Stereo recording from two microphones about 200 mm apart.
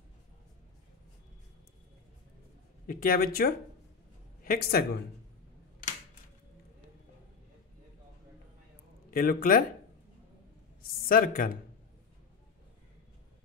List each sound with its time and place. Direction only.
2.9 s speech: 45° left (ahead or behind)
9.1 s speech: 45° left (ahead or behind)
10.8 s a man's voice: 45° left (ahead or behind)